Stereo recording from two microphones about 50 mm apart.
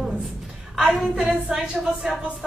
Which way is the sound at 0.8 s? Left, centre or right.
Centre.